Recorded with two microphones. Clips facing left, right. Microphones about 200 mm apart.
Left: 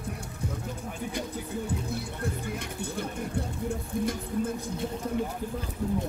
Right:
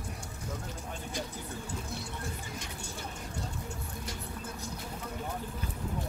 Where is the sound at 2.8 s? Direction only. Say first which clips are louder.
Left 9 dB; 55° left (ahead or behind).